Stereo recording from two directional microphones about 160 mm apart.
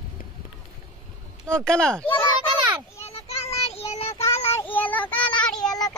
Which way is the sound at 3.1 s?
40° left (ahead or behind).